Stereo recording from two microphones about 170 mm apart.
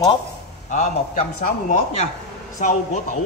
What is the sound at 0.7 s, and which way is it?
A man's voice, 45° left (ahead or behind).